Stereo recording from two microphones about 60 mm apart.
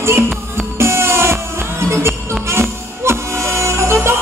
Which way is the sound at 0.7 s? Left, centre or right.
Right.